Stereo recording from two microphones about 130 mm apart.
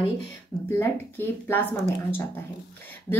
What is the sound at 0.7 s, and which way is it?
Speech, 20° left (ahead or behind).